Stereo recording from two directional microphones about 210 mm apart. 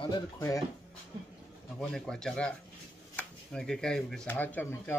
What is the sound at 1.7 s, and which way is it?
Speech, centre (ahead or behind).